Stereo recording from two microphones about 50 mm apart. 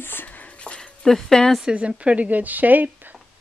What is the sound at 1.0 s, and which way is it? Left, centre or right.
Speech, centre.